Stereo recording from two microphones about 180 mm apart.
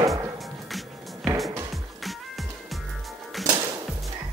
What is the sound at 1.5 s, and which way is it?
Music, 15° right (ahead or behind).